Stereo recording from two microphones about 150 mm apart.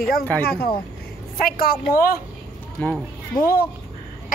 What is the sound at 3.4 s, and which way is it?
Speech, 85° left.